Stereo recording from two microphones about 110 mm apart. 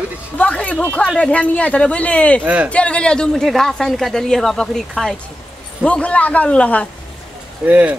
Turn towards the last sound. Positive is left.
turn(degrees=-15)  # may be behind; listen again after turning